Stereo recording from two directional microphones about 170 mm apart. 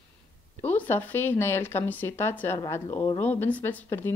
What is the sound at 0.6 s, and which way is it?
Speech, 10° left (ahead or behind).